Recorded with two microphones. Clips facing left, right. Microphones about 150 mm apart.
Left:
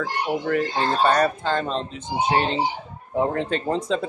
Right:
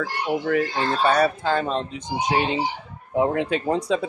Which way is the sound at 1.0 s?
5° right (ahead or behind).